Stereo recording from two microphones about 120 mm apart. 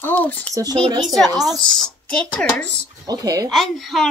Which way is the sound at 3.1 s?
30° right (ahead or behind).